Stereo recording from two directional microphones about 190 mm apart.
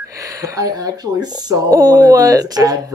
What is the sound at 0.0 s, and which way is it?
Speech, 15° right (ahead or behind).